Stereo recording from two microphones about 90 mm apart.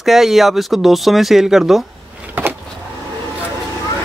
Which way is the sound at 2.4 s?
25° right (ahead or behind).